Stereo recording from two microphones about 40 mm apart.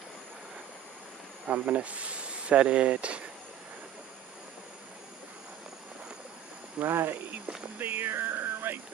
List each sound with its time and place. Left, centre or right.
1.5 s speech: right
6.8 s speech: right
7.8 s speech: right